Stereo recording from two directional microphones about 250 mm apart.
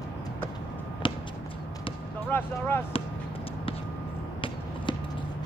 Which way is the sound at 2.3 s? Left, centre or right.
Centre.